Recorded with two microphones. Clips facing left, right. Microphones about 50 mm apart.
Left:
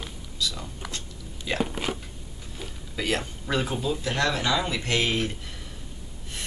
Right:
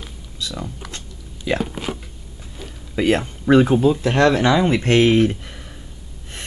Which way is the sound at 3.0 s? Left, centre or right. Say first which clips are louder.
Right 10 dB; right.